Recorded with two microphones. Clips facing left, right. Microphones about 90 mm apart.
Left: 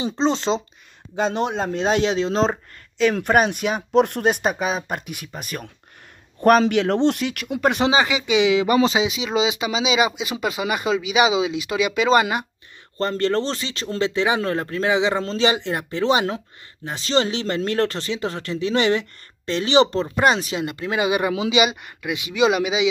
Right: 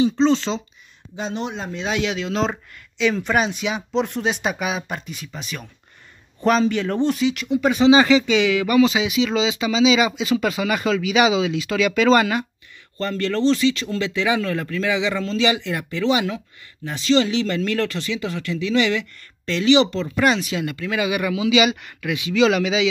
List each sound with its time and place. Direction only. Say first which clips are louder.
0.0 s speech: right 4 dB; 30° left (ahead or behind)
1.1 s speech: left 5 dB; 50° left (ahead or behind); by 2.5 s 35° left (ahead or behind)
3.0 s speech: left 2 dB; 50° left (ahead or behind)
5.0 s speech: left 1 dB; 60° left (ahead or behind)
5.3 s speech: left 2 dB; 45° left (ahead or behind)
6.4 s speech: left 3 dB; 65° left (ahead or behind)
7.9 s speech: right 5 dB; 20° left (ahead or behind)
12.9 s speech: left 2 dB; 35° left (ahead or behind); by 22.8 s 15° left (ahead or behind)